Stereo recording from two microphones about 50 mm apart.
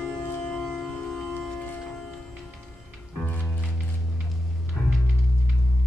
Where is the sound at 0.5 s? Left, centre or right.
Centre.